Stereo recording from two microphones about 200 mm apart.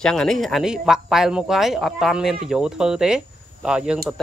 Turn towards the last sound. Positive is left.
turn(degrees=-5)  # may be behind; listen again after turning